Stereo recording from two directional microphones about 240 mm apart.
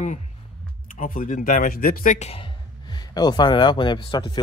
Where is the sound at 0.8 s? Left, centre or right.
Left.